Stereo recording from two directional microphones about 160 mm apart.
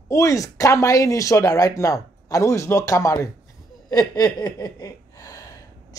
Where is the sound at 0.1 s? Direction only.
20° left (ahead or behind).